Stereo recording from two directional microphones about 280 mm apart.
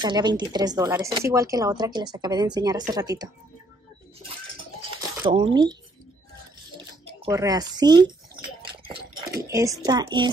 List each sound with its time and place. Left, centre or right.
0.0 s speech: centre
4.9 s a sound: centre
7.2 s speech: centre